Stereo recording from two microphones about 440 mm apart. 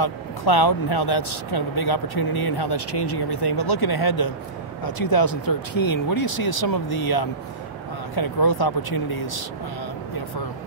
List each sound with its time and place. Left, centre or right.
0.0 s speech: left